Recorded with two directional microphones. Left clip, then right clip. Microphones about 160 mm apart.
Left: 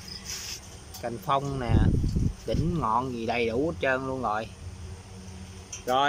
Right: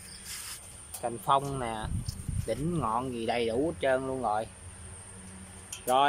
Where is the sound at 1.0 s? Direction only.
5° left (ahead or behind).